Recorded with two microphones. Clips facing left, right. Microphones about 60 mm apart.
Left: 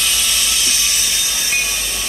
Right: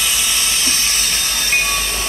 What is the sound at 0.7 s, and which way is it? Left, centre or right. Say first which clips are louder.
Train: right 1 dB; right.